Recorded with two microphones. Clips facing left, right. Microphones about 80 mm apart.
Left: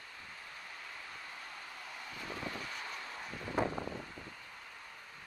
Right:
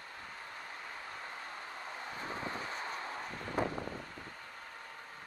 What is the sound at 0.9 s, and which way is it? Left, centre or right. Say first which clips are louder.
Vehicle: right 3 dB; right.